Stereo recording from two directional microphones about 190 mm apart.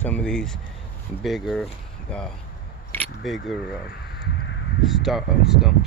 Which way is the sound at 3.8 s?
60° left (ahead or behind).